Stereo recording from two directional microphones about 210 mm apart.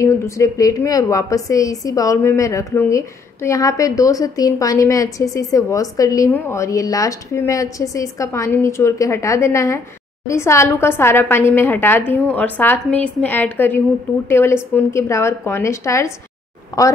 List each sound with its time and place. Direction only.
0.0 s a woman's voice: 15° left (ahead or behind)